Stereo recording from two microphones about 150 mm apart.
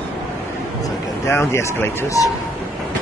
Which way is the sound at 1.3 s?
15° left (ahead or behind).